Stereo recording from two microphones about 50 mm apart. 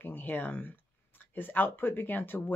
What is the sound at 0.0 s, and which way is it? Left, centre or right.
Speech, left.